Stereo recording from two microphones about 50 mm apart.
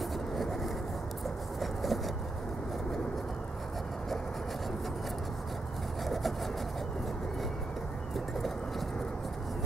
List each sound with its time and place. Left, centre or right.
0.0 s vehicle: centre
1.6 s a sound: centre
6.0 s vehicle: centre